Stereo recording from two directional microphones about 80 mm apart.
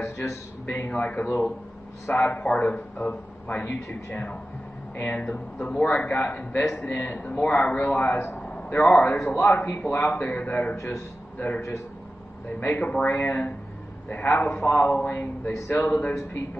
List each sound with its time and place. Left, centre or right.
0.0 s a man's voice: left
0.7 s a man's voice: centre
6.9 s a man's voice: left
15.5 s a man's voice: left
15.8 s a man's voice: left